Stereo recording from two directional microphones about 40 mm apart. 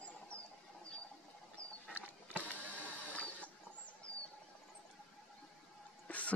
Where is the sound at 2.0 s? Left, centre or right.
Left.